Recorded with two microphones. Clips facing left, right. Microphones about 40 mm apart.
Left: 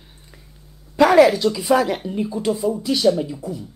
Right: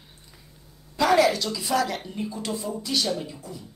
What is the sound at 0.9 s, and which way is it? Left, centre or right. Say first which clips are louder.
A woman's voice: left 7 dB; left.